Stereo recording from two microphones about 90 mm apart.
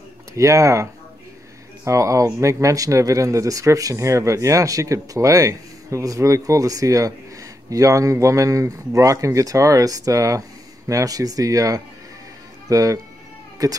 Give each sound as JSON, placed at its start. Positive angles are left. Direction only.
{"t": 0.3, "sound": "speech", "side_deg": -35}
{"t": 1.9, "sound": "speech", "side_deg": -35}